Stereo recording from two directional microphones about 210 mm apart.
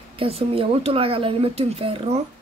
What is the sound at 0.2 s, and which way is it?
A woman's voice, 25° right (ahead or behind).